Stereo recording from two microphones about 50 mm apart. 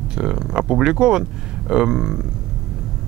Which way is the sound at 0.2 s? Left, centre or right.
Centre.